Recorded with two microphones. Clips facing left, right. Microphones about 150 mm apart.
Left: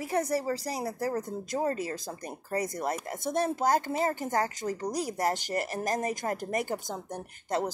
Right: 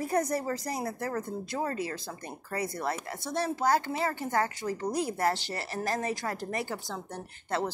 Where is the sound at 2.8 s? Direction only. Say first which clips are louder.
Left 2 dB; 45° left (ahead or behind).